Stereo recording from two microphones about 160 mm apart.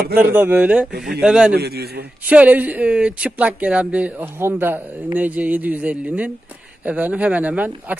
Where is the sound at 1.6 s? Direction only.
90° right.